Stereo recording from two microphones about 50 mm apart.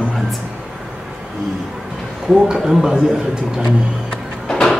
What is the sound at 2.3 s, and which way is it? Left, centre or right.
Speech, centre.